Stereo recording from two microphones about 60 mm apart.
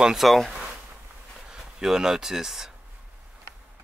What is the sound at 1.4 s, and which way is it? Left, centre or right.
Speech, centre.